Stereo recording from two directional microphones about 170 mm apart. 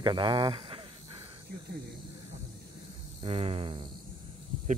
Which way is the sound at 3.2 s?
35° right (ahead or behind).